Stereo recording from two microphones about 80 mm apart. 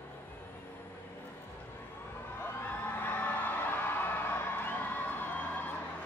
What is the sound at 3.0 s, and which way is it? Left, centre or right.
Music, left.